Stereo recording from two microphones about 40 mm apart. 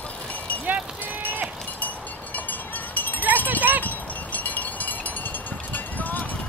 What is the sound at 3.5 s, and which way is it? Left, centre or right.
Clip-clop, right.